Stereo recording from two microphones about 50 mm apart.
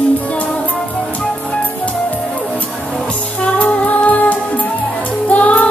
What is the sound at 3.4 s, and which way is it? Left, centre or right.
Music, left.